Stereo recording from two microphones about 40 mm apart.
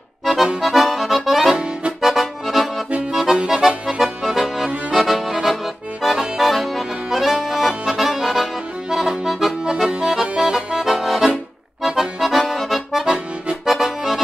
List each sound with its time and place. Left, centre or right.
0.2 s accordion: centre
1.5 s accordion: right
2.0 s accordion: centre
3.3 s accordion: right
4.9 s music: centre
6.1 s accordion: centre
10.2 s accordion: right
10.5 s accordion: centre
13.0 s accordion: right
13.7 s accordion: centre